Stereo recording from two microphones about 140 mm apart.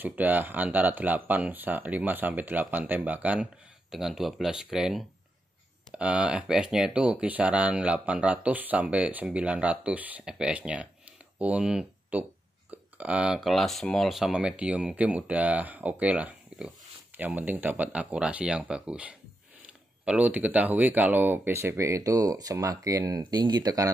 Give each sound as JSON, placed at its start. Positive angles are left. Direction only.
{"t": 0.0, "sound": "speech", "side_deg": -10}